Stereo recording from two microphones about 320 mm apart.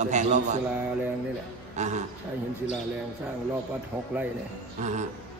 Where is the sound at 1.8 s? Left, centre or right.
Right.